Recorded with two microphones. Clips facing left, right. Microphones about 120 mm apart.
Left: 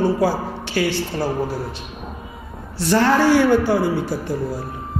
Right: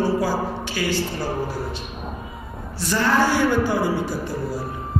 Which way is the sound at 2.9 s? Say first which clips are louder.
Left 5 dB; 70° left (ahead or behind).